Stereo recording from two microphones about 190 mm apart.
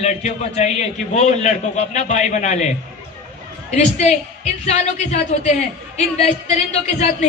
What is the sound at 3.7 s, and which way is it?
A man's voice, 35° left (ahead or behind).